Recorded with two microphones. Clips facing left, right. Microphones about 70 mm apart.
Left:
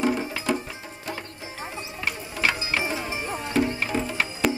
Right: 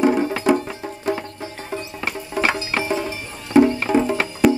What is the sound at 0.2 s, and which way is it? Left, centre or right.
Music, right.